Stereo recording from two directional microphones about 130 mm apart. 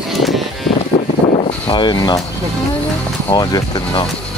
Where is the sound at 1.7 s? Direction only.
35° left (ahead or behind).